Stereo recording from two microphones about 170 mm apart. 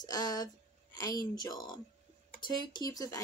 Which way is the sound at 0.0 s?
20° left (ahead or behind).